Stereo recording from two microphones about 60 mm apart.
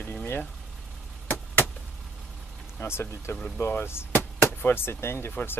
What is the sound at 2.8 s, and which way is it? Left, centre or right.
Speech, left.